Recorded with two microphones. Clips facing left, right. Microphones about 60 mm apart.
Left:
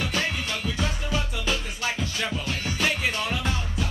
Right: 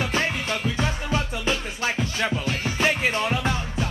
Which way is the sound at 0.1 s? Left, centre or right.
Right.